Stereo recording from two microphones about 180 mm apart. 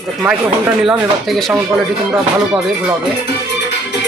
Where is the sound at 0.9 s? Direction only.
Centre (ahead or behind).